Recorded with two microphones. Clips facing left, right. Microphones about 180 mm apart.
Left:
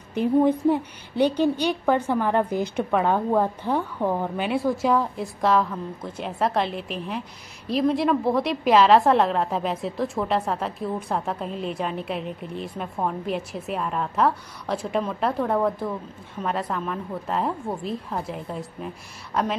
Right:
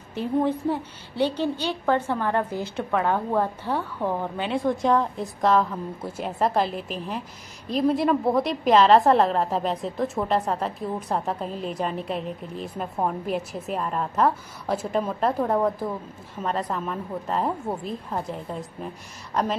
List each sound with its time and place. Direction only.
0.1 s a woman's voice: 15° left (ahead or behind)